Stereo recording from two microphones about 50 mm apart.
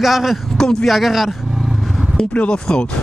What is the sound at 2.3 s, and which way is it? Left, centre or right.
Speech, left.